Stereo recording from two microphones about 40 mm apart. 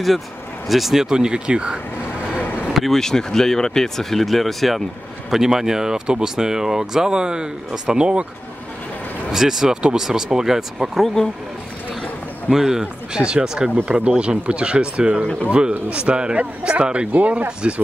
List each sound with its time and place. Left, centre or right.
0.7 s speech: centre; by 1.8 s right
2.3 s vehicle: left
2.7 s speech: centre
5.3 s speech: centre; by 8.3 s right
9.3 s speech: centre
9.8 s speech: right
12.4 s speech: centre
13.1 s speech: right
17.1 s speech: right
17.5 s speech: right